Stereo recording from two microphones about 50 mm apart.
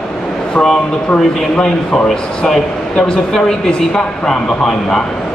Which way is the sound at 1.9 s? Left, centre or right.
Centre.